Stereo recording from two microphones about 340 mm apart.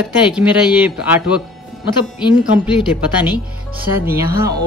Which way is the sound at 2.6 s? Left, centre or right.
Centre.